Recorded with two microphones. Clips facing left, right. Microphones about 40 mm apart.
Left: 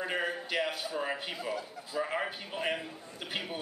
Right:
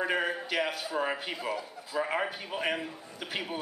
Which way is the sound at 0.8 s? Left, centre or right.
Right.